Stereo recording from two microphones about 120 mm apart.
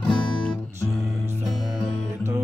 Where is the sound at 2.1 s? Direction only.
20° right (ahead or behind).